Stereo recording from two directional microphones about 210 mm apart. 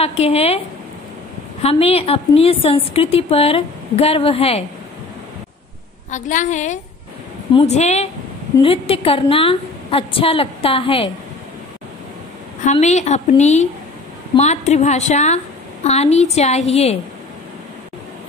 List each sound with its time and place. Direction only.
0.0 s a woman's voice: 30° left (ahead or behind)
1.6 s a woman's voice: 25° left (ahead or behind)
6.0 s a woman's voice: 35° left (ahead or behind)
12.6 s a woman's voice: 35° left (ahead or behind)